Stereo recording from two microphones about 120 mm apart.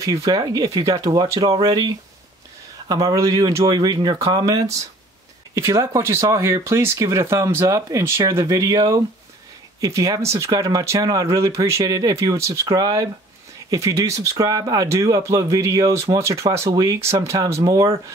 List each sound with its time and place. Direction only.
0.0 s speech: 25° right (ahead or behind)